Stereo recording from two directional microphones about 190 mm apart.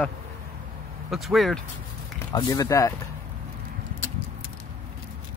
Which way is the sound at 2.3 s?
20° left (ahead or behind).